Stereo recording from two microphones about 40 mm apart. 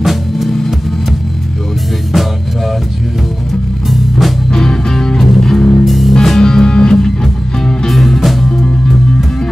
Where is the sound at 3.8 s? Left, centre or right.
Centre.